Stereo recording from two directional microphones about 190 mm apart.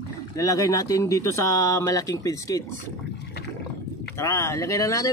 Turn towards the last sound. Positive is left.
turn(degrees=15)  # may be behind; listen again after turning